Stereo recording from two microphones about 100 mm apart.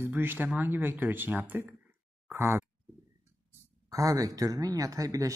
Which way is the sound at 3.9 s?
35° right (ahead or behind).